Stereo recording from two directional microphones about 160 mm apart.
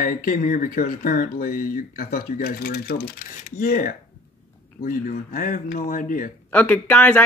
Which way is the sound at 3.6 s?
55° left (ahead or behind).